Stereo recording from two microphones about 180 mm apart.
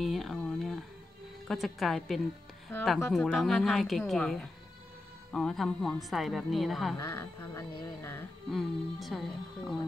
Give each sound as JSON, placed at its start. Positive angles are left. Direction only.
{"t": 0.0, "sound": "a sound", "side_deg": 0}
{"t": 1.5, "sound": "a woman's voice", "side_deg": 0}
{"t": 7.0, "sound": "music", "side_deg": 15}
{"t": 8.5, "sound": "a woman's voice", "side_deg": 0}